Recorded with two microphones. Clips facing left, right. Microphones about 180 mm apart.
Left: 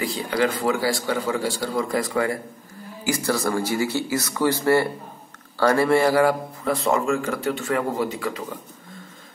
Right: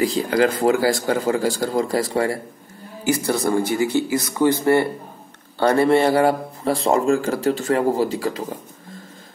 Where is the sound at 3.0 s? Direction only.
20° right (ahead or behind).